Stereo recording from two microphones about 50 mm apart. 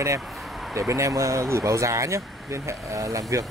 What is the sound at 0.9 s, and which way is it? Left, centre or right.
Speech, right.